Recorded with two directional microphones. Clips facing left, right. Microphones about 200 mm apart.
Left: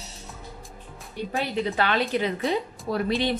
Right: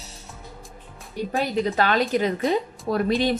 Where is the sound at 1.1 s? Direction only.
45° right (ahead or behind).